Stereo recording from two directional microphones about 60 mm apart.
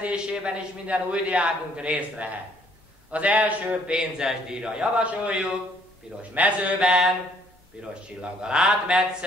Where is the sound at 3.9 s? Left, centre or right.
Centre.